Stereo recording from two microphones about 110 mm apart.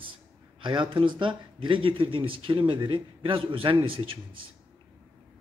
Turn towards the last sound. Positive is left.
turn(degrees=-55)  # may be behind; listen again after turning